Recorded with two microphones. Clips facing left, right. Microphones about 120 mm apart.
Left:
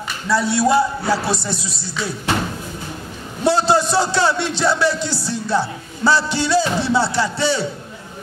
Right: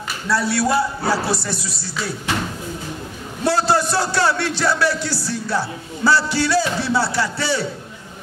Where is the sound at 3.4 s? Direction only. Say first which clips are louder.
Left 2 dB; 20° left (ahead or behind).